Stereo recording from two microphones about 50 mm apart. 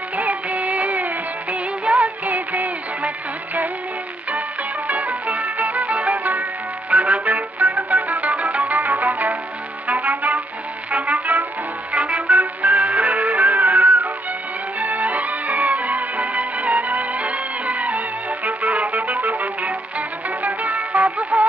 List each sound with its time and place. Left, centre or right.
0.1 s music of bollywood: right
4.8 s music: right